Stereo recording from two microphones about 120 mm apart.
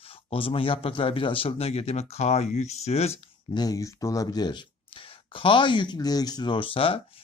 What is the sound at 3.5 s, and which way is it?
Speech, 30° left (ahead or behind).